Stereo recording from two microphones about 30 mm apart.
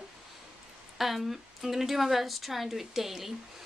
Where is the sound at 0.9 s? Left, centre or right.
Centre.